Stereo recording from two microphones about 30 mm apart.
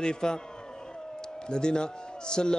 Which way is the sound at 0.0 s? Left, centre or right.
Left.